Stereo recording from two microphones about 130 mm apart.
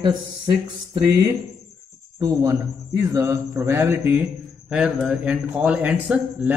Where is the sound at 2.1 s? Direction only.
25° right (ahead or behind).